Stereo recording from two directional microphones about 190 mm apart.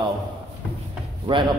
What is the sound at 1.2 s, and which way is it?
Speech, 25° right (ahead or behind).